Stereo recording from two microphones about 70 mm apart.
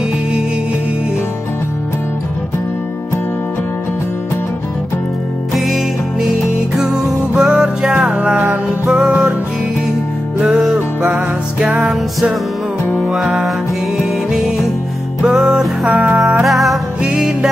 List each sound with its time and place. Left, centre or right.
7.3 s music: centre
10.4 s music: centre
11.9 s music: centre
15.2 s music: centre
16.2 s music: centre
17.0 s music: centre